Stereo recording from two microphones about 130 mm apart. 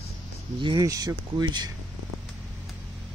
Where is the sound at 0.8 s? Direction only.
25° right (ahead or behind).